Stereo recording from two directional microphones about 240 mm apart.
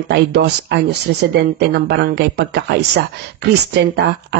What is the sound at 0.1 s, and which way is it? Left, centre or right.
A woman's voice, right.